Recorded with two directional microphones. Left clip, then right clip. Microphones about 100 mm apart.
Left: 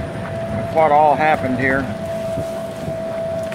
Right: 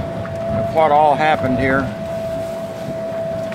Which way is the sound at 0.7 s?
30° right (ahead or behind).